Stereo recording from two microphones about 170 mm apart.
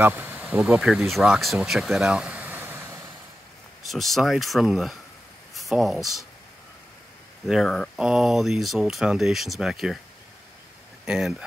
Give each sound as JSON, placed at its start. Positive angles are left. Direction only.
{"t": 0.0, "sound": "speech", "side_deg": -15}
{"t": 0.4, "sound": "speech", "side_deg": 0}
{"t": 2.4, "sound": "vehicle", "side_deg": -15}
{"t": 3.9, "sound": "speech", "side_deg": 0}
{"t": 7.4, "sound": "speech", "side_deg": 0}
{"t": 11.1, "sound": "speech", "side_deg": -5}